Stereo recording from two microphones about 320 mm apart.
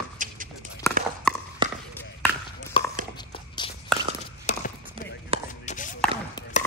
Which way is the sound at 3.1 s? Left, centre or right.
Centre.